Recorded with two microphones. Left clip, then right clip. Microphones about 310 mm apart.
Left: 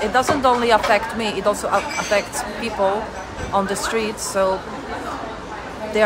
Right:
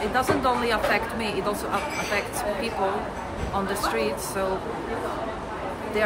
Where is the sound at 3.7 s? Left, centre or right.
Centre.